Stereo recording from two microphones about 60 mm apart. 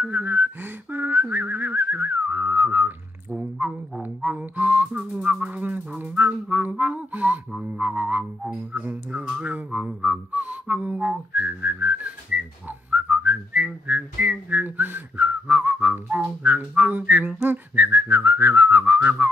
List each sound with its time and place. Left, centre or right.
0.0 s whistling: right
4.0 s music: right
6.8 s a sound: right
7.8 s music: right
9.4 s music: right
10.0 s whistling: right